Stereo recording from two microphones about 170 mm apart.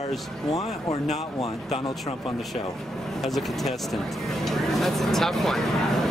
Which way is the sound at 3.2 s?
Centre (ahead or behind).